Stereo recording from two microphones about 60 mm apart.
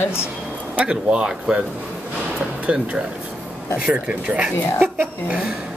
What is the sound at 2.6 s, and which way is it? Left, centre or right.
Speech, right.